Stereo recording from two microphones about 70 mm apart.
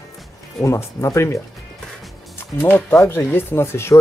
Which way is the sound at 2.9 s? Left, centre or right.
Left.